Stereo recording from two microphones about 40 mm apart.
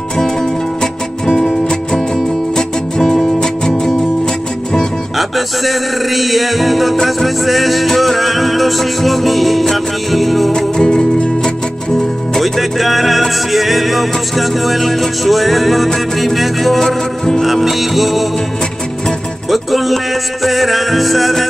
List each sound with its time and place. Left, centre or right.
2.5 s music: centre
5.7 s music: centre
10.5 s music: centre
12.4 s music: centre
19.5 s music: centre